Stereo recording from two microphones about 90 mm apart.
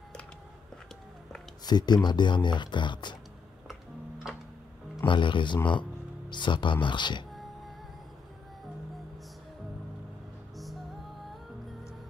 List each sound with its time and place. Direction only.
1.6 s speech: 50° left (ahead or behind)
4.2 s music: 5° right (ahead or behind)
5.0 s speech: 65° left (ahead or behind)